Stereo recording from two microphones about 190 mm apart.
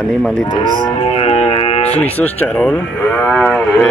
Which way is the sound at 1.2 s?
30° left (ahead or behind).